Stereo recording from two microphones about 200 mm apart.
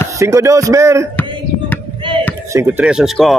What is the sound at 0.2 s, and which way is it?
Speech, 15° right (ahead or behind).